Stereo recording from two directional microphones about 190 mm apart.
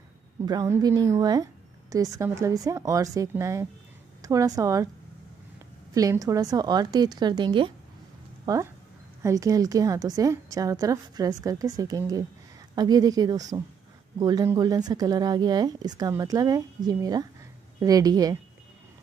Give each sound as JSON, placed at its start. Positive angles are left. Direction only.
{"t": 0.5, "sound": "a woman's voice", "side_deg": -20}
{"t": 5.9, "sound": "a woman's voice", "side_deg": -20}